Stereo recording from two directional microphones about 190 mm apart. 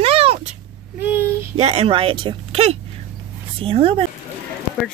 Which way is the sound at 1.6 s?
35° right (ahead or behind).